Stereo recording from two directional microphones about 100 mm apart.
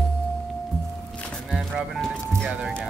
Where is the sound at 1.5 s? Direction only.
10° right (ahead or behind).